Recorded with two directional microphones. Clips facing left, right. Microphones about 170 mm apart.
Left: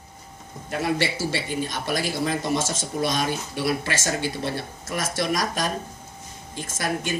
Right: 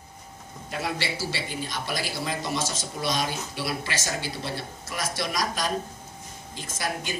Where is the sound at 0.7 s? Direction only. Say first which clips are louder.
Left 6 dB; 50° left (ahead or behind).